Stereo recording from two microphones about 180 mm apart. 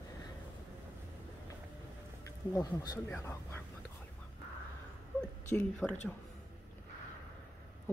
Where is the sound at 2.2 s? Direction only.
20° left (ahead or behind).